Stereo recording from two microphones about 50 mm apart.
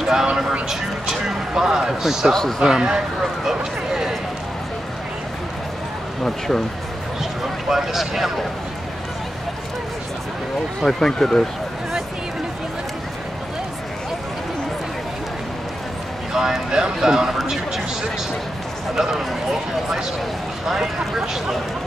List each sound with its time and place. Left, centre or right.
0.0 s a sound: centre
2.6 s speech: centre
3.4 s a sound: centre
6.2 s speech: centre
7.7 s speech: centre
10.9 s speech: centre
16.3 s speech: centre
18.9 s speech: centre